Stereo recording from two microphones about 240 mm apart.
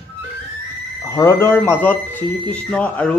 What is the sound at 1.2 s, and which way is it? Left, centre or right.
Speech, centre.